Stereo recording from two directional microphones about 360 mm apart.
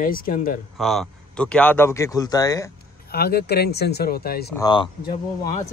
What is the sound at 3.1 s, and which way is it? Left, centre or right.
Speech, left.